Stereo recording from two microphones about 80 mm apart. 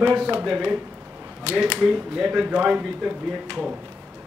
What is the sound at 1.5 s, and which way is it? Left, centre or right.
Speech, left.